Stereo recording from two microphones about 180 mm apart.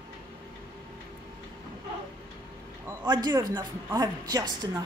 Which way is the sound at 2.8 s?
20° right (ahead or behind).